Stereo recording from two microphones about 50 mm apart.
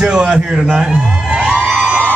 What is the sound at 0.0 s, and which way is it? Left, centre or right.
Speech, right.